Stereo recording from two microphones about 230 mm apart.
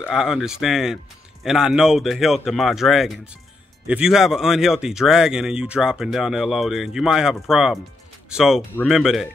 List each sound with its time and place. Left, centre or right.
0.1 s speech: centre